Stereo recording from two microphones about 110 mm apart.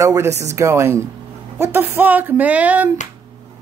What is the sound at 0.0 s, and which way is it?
Speech, 30° right (ahead or behind).